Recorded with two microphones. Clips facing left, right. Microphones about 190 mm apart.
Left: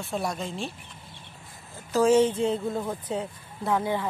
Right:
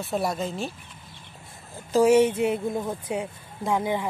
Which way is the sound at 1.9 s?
10° right (ahead or behind).